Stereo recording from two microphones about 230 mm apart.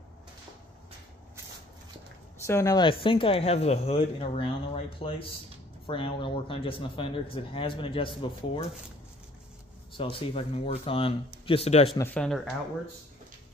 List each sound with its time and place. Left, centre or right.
2.4 s speech: centre
9.9 s speech: left
12.0 s speech: centre